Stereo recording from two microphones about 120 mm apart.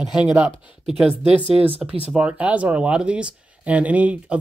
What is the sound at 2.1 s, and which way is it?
Speech, 10° right (ahead or behind).